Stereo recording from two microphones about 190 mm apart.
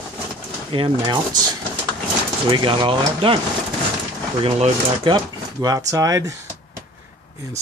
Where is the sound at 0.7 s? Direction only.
25° right (ahead or behind).